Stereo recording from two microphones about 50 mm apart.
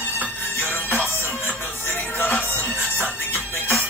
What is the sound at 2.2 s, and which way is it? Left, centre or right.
Music, left.